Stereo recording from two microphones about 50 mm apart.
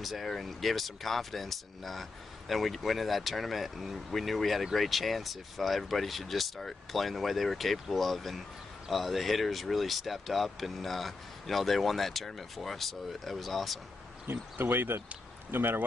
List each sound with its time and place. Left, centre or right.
0.0 s speech: centre
14.2 s speech: right